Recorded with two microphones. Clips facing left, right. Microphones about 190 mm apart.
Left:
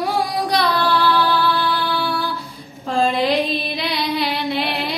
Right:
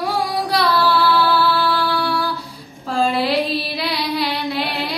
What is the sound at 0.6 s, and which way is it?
Female singing, 15° left (ahead or behind).